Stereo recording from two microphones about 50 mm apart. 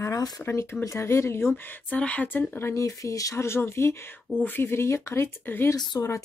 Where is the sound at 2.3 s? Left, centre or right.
Left.